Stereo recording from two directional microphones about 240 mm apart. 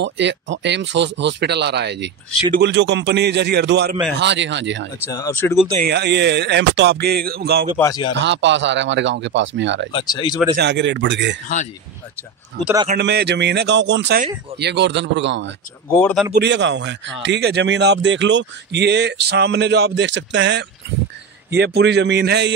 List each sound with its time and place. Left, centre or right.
0.0 s speech: right
5.0 s speech: centre
5.8 s speech: right
7.8 s speech: centre
8.2 s speech: right
9.9 s speech: centre
10.5 s speech: right
12.6 s speech: right
15.9 s speech: centre
16.3 s speech: right